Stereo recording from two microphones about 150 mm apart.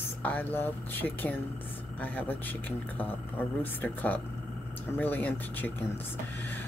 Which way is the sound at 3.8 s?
10° left (ahead or behind).